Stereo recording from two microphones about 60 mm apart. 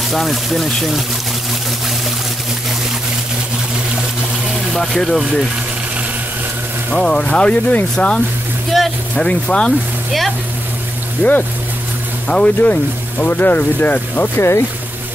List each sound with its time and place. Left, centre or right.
0.1 s speech: centre
4.7 s speech: centre
6.9 s speech: centre
8.7 s a sound: centre
9.1 s speech: centre
11.2 s speech: left
13.2 s speech: left
14.3 s speech: left